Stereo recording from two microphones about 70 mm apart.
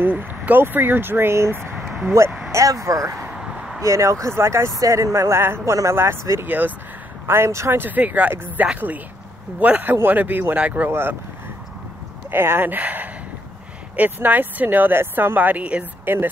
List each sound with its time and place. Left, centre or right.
0.0 s speech: right
1.8 s a sound: centre
2.5 s speech: right
3.3 s vehicle: centre
3.8 s speech: right
6.4 s speech: right
7.2 s speech: right
7.8 s speech: right
10.9 s speech: right
12.3 s speech: right